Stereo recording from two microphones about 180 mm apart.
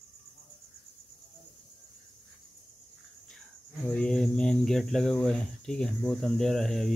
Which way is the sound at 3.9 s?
5° left (ahead or behind).